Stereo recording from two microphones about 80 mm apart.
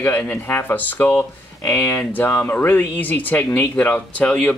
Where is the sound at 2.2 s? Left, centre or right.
Left.